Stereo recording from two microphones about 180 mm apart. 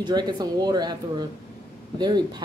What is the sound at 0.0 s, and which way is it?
Speech, 25° right (ahead or behind).